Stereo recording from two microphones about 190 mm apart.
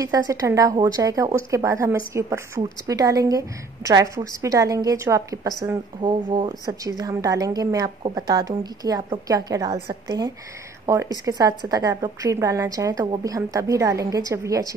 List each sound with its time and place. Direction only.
0.0 s a woman's voice: 20° right (ahead or behind)